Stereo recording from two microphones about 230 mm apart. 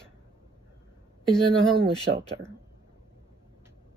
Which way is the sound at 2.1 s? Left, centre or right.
Right.